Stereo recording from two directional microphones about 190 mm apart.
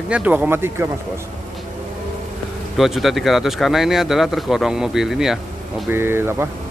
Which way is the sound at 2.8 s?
Centre (ahead or behind).